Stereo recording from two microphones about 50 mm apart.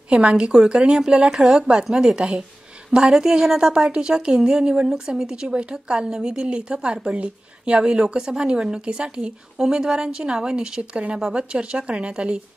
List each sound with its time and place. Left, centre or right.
0.1 s a woman's voice: centre